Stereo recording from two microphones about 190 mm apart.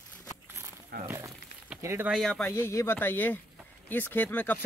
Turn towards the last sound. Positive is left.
turn(degrees=10)  # may be behind; listen again after turning